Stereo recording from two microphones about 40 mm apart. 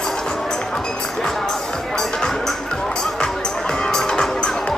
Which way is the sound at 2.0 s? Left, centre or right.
Centre.